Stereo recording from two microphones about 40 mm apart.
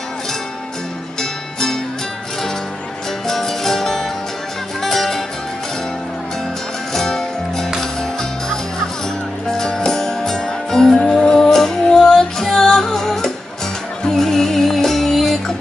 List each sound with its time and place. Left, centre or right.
3.3 s music: centre
6.9 s music: centre
9.5 s music: centre